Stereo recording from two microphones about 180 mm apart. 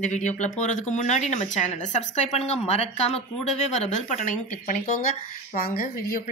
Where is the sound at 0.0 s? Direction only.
40° left (ahead or behind).